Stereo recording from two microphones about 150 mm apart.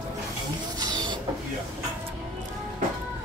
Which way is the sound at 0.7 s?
30° right (ahead or behind).